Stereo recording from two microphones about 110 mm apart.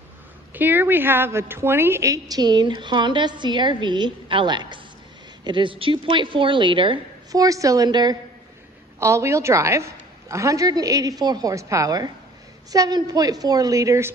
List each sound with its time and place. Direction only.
0.5 s a woman's voice: 15° right (ahead or behind); by 7.0 s 50° right (ahead or behind)
7.3 s a woman's voice: 30° right (ahead or behind)
9.0 s a woman's voice: 25° right (ahead or behind)